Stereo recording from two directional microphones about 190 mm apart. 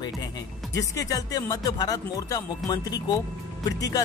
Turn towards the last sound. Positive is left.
turn(degrees=20)  # may be behind; listen again after turning